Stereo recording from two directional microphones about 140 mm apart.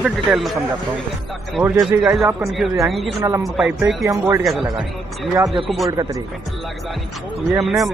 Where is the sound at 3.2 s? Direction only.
20° right (ahead or behind).